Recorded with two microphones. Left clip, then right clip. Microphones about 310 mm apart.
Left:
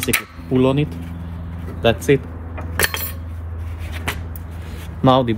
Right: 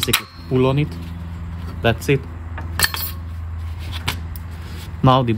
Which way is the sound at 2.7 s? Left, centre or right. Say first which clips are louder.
Even; centre.